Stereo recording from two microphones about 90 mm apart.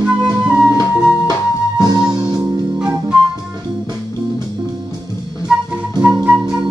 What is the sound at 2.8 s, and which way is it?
Music, 10° right (ahead or behind).